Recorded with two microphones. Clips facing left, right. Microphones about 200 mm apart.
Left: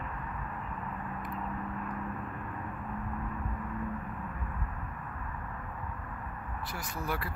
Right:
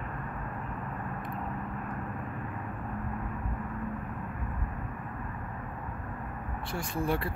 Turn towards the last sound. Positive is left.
turn(degrees=-25)  # may be behind; listen again after turning